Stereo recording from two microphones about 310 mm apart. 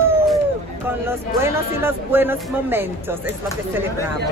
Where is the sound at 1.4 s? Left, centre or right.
Centre.